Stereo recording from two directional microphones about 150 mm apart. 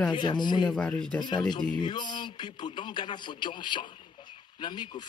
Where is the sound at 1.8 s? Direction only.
30° left (ahead or behind).